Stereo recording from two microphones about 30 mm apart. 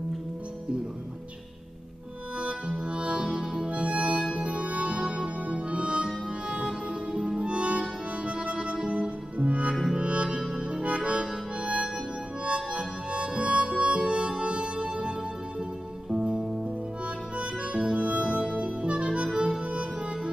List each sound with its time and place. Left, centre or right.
2.9 s music: right
3.7 s music: right
5.5 s harmonica: right
7.2 s music: right
7.4 s music: right
10.7 s accordion: right
11.1 s harmonica: right
16.1 s music: right
17.4 s harmonica: right
18.5 s music: right